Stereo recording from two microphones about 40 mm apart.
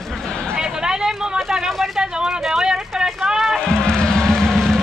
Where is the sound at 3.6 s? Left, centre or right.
Centre.